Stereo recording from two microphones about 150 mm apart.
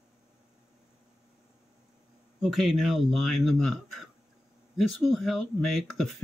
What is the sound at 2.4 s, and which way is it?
Speech, centre (ahead or behind).